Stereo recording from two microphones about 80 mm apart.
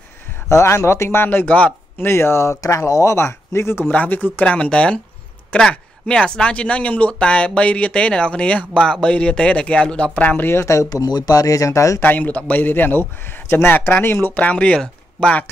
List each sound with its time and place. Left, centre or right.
0.5 s speech: left; by 2.0 s centre
2.0 s speech: left
3.9 s speech: left
12.0 s speech: left